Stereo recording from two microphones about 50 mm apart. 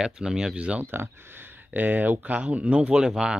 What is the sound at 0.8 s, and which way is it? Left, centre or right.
Speech, right.